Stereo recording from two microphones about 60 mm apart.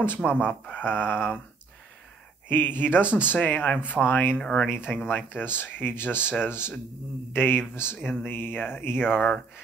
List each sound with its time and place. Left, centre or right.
0.5 s speech: left
2.4 s speech: left
4.4 s speech: centre
4.9 s speech: left